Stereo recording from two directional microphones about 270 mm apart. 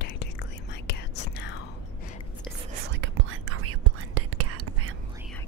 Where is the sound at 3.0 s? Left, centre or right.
Right.